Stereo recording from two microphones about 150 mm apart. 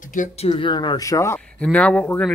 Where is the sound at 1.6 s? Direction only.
5° left (ahead or behind).